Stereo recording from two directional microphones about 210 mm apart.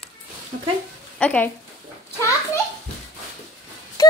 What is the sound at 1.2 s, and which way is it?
Speech, 5° left (ahead or behind).